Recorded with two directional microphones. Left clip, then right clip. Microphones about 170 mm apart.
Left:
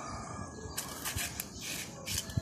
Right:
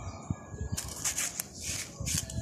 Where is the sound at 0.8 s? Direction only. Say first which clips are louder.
Right 4 dB; 25° right (ahead or behind).